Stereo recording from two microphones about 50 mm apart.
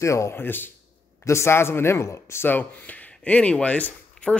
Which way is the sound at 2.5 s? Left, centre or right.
Left.